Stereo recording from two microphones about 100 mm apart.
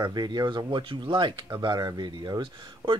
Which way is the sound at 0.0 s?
45° right (ahead or behind).